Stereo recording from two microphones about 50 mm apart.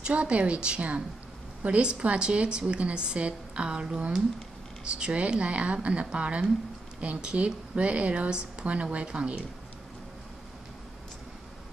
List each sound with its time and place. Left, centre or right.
0.0 s a woman's voice: right